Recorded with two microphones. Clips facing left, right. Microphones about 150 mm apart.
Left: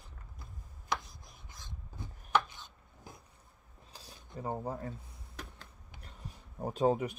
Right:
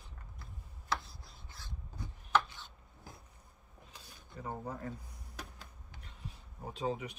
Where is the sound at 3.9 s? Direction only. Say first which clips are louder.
Left 4 dB; 35° left (ahead or behind).